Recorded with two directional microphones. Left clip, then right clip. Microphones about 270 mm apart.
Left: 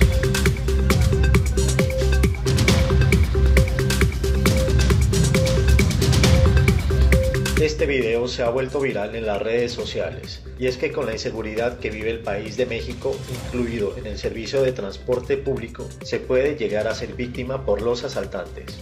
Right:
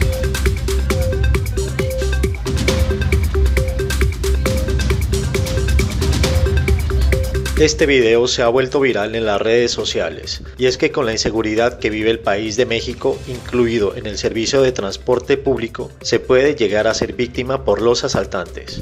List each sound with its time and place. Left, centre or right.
0.0 s music: centre
7.6 s speech: right